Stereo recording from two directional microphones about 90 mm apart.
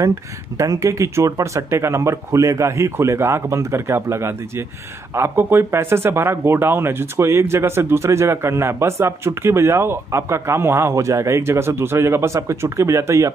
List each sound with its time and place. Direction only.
0.6 s speech: 40° right (ahead or behind)